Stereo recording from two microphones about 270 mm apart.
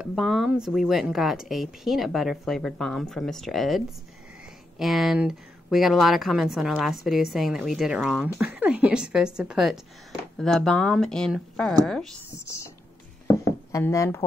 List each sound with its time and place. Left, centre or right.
0.0 s speech: centre
13.7 s speech: centre